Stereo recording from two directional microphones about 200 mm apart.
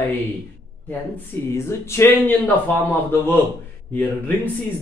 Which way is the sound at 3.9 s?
10° left (ahead or behind).